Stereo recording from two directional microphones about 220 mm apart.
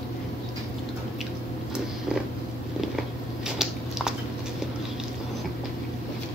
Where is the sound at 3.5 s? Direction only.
Centre (ahead or behind).